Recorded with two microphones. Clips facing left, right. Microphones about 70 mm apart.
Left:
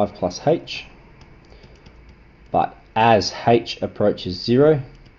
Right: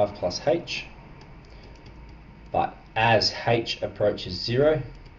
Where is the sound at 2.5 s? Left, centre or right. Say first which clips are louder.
Left 6 dB; left.